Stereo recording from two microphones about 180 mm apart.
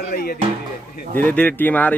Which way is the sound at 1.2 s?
10° left (ahead or behind).